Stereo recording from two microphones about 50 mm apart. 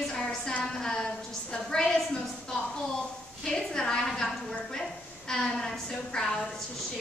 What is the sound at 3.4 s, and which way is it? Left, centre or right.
Speech, centre.